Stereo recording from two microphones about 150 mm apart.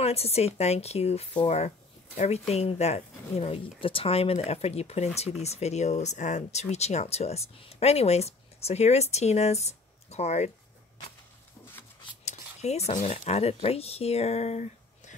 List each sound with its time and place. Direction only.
0.0 s speech: 45° left (ahead or behind)
12.3 s speech: 45° left (ahead or behind)